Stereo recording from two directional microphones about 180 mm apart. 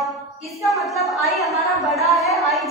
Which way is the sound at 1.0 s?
Centre (ahead or behind).